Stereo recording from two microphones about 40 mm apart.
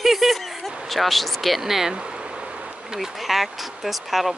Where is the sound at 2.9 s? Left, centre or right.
Centre.